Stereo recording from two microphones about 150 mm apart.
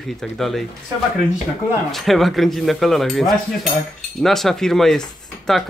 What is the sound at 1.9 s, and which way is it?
Speech, centre (ahead or behind).